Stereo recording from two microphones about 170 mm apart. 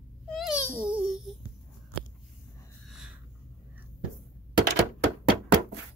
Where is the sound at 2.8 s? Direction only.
5° right (ahead or behind).